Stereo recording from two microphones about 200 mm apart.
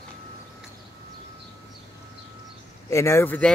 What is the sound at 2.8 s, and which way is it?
Speech, 15° left (ahead or behind).